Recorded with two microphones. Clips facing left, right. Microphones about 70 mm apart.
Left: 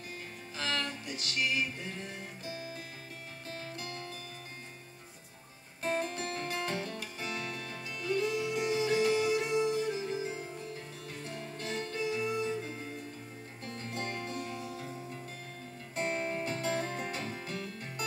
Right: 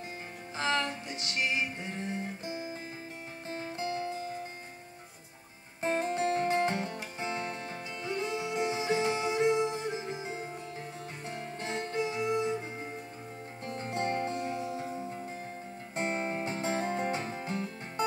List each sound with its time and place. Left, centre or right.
0.6 s music: right
5.8 s music: right